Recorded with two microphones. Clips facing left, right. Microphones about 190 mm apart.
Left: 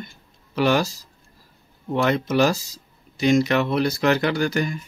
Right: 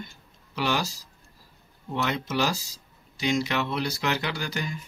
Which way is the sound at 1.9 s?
50° left (ahead or behind).